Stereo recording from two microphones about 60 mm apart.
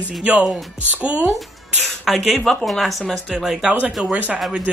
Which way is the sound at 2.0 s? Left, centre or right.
Centre.